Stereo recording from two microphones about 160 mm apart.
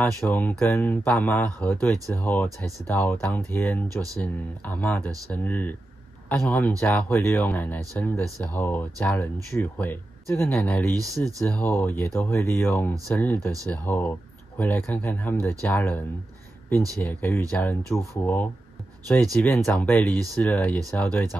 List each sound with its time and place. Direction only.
0.2 s speech: 10° left (ahead or behind)
11.0 s speech: 20° right (ahead or behind)
11.4 s speech: 10° left (ahead or behind)
17.0 s speech: 15° left (ahead or behind)